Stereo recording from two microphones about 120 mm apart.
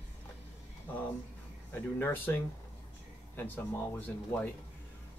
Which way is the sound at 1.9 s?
20° left (ahead or behind).